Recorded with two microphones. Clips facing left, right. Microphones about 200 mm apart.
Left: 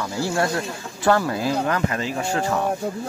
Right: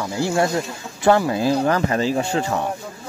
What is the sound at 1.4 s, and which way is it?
Speech, 30° right (ahead or behind).